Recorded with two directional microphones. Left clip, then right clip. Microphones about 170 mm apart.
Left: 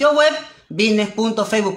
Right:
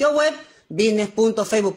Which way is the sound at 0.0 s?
45° right (ahead or behind).